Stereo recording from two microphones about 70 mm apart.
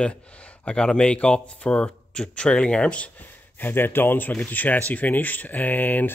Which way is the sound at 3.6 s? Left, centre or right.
Left.